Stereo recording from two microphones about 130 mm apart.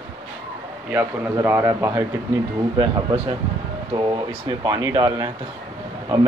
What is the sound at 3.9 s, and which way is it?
Speech, 45° right (ahead or behind).